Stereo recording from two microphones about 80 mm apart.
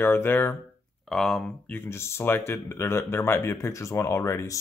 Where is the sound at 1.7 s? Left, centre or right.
Left.